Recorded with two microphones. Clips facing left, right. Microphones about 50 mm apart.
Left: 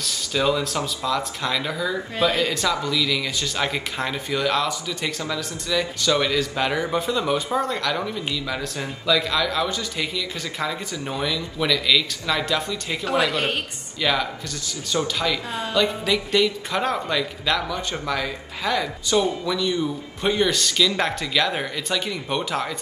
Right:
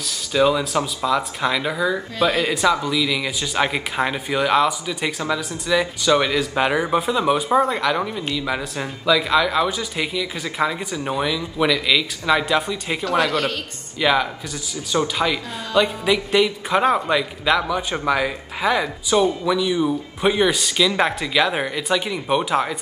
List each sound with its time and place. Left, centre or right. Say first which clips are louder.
0.0 s speech: right 4 dB; centre
2.2 s speech: right 2 dB; right
2.5 s speech: right 4 dB; centre
19.4 s speech: right 4 dB; centre